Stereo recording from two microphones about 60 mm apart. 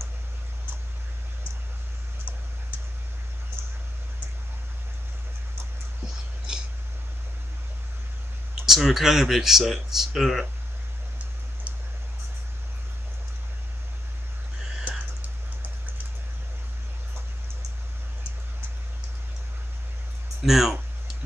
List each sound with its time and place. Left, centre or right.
8.6 s speech: centre
14.9 s a sound: right
20.4 s speech: centre